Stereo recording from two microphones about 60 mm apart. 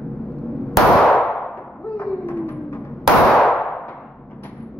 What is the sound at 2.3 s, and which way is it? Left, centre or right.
Music, left.